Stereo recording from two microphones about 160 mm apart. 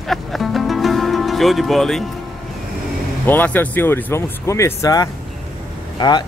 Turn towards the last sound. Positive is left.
turn(degrees=30)  # may be behind; listen again after turning